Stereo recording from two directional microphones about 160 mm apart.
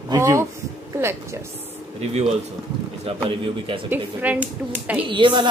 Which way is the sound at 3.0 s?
35° right (ahead or behind).